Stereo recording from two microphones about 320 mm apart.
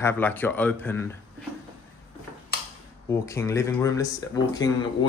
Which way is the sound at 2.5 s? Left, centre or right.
Left.